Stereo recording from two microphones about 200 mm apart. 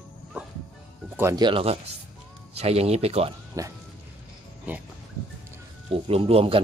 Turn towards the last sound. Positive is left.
turn(degrees=-30)  # may be behind; listen again after turning